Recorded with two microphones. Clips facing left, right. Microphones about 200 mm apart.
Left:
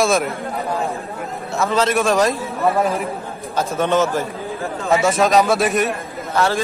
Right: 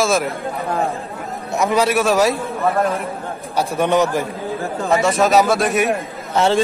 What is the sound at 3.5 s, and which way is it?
Speech, 15° right (ahead or behind).